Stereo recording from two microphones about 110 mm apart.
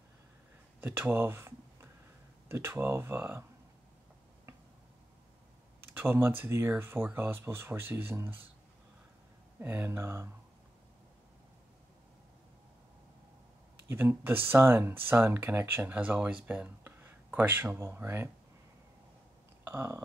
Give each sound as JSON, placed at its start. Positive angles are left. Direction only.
{"t": 0.7, "sound": "speech", "side_deg": -20}
{"t": 5.9, "sound": "speech", "side_deg": -20}
{"t": 9.6, "sound": "speech", "side_deg": -20}
{"t": 13.8, "sound": "speech", "side_deg": -20}
{"t": 19.6, "sound": "a sound", "side_deg": -25}